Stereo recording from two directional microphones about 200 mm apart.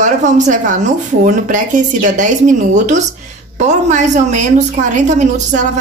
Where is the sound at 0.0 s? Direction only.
40° right (ahead or behind).